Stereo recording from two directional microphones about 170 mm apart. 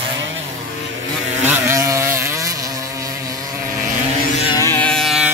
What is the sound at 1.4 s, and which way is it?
Vehicle, 15° right (ahead or behind).